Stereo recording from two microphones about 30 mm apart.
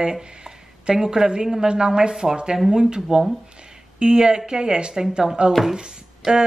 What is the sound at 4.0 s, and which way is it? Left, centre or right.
Speech, right.